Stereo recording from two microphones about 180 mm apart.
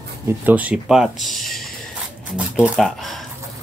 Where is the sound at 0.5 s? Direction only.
10° right (ahead or behind).